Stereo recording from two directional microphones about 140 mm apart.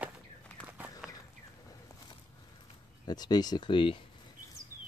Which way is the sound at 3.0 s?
30° left (ahead or behind).